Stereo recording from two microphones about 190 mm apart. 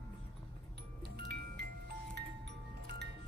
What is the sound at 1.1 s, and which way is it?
Music, 60° right (ahead or behind).